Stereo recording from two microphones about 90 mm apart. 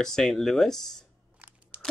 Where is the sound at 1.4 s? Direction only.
20° right (ahead or behind).